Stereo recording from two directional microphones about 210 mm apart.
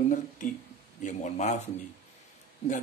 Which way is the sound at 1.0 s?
35° left (ahead or behind).